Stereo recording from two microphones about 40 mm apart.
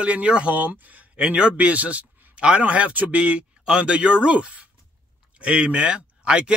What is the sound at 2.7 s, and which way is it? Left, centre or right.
Speech, right.